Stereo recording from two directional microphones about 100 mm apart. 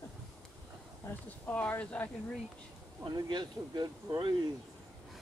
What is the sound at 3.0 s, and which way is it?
Speech, 45° right (ahead or behind).